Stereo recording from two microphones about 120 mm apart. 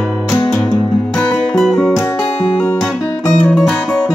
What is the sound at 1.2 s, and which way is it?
Music, 5° left (ahead or behind).